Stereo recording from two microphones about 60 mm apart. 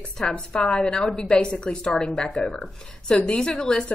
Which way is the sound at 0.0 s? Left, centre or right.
Left.